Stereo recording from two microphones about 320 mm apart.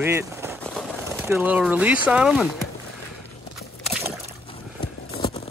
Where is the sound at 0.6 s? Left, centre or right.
Centre.